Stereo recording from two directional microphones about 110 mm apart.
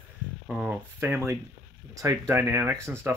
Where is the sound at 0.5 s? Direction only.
5° right (ahead or behind).